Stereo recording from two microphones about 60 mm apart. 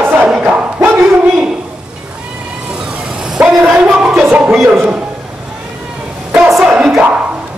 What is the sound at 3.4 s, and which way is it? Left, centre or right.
Speech, right.